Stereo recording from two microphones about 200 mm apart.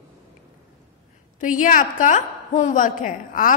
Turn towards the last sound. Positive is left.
turn(degrees=45)  # may be behind; listen again after turning